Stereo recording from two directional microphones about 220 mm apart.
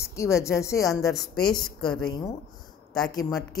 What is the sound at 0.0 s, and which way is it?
Speech, 15° left (ahead or behind).